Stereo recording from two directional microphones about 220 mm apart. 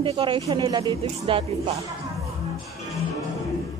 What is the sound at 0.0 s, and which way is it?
Speech, 25° right (ahead or behind).